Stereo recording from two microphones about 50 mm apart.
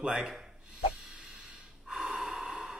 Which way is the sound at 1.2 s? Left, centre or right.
Centre.